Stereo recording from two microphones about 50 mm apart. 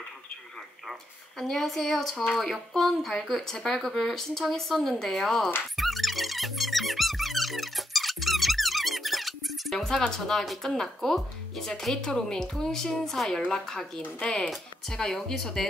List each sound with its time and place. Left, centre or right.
1.4 s speech: centre
5.8 s music: centre
9.8 s speech: centre